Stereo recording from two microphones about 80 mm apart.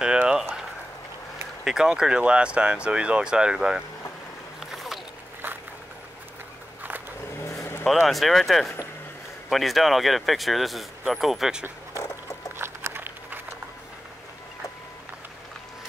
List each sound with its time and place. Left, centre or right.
0.0 s a sound: centre
1.6 s speech: centre
4.6 s boat: centre
7.4 s vehicle: left
7.8 s speech: centre
12.5 s a sound: right